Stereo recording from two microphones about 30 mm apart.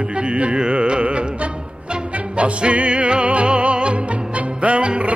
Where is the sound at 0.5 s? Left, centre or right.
Right.